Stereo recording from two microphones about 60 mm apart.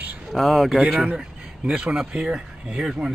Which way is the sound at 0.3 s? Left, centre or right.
Centre.